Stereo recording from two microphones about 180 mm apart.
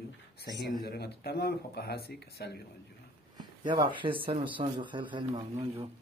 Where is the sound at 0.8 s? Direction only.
65° left (ahead or behind).